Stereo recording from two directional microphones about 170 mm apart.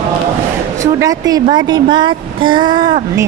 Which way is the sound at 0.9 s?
20° right (ahead or behind).